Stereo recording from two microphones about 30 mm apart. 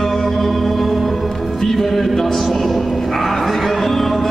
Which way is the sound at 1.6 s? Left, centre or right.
Centre.